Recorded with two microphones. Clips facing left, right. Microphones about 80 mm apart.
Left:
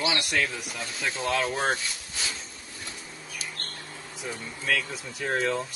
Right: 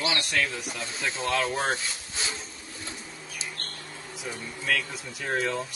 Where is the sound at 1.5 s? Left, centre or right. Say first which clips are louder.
Left 1 dB; centre.